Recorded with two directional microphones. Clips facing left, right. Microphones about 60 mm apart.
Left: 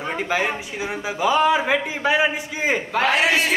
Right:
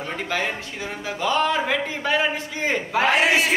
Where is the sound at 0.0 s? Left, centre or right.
Centre.